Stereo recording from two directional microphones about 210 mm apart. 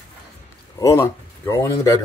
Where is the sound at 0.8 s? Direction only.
15° left (ahead or behind).